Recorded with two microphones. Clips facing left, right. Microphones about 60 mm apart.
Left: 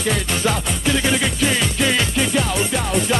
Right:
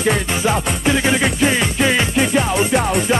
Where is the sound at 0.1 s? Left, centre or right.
Centre.